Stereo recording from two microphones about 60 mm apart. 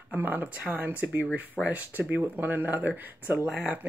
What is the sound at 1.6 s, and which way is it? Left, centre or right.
Speech, left.